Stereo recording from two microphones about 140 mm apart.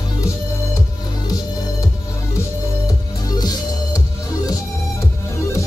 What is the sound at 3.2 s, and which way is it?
Music, 30° left (ahead or behind).